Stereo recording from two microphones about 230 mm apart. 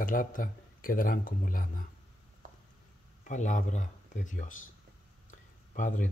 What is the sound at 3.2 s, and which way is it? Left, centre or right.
Speech, left.